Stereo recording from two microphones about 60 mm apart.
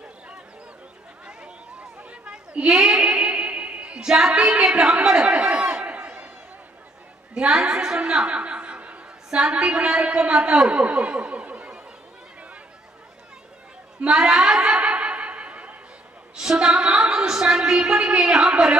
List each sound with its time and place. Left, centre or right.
1.2 s a sound: centre
4.1 s a woman's voice: centre
6.0 s a sound: right
7.3 s a woman's voice: centre
14.0 s chuckle: centre
16.3 s a woman's voice: centre